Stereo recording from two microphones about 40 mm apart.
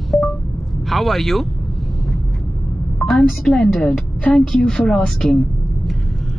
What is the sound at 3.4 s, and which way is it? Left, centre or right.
Speech, centre.